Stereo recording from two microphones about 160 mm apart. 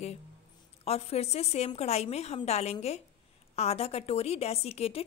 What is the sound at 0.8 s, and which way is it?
A woman's voice, 40° left (ahead or behind).